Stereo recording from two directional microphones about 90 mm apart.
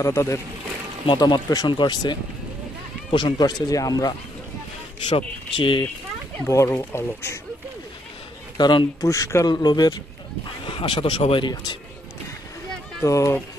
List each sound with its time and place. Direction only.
0.0 s speech: 30° left (ahead or behind)
1.0 s speech: 60° left (ahead or behind)
3.6 s speech: 40° left (ahead or behind)
5.1 s speech: 70° left (ahead or behind)
6.4 s speech: 30° left (ahead or behind)
8.5 s speech: 55° left (ahead or behind)
9.0 s speech: 35° left (ahead or behind)
10.6 s speech: 70° left (ahead or behind)
13.0 s speech: 35° left (ahead or behind)